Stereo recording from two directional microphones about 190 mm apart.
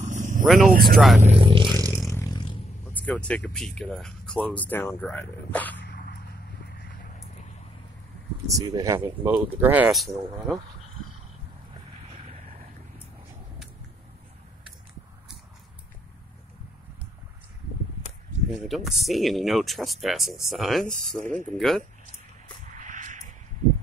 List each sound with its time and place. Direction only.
0.0 s vehicle: 40° right (ahead or behind)
0.7 s speech: 50° right (ahead or behind)
0.9 s speech: centre (ahead or behind)
1.2 s vehicle: 30° right (ahead or behind)
2.1 s a sound: 20° left (ahead or behind)
3.2 s speech: 5° left (ahead or behind)
8.5 s speech: 20° right (ahead or behind); by 10.6 s centre (ahead or behind)
12.1 s vehicle: 35° right (ahead or behind)
18.5 s speech: centre (ahead or behind)
22.8 s a sound: 40° right (ahead or behind)